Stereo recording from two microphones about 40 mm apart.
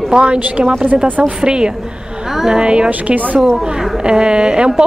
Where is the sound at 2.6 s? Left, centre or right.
Right.